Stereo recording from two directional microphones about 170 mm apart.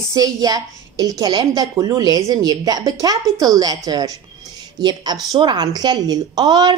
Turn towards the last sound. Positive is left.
turn(degrees=-25)  # may be behind; listen again after turning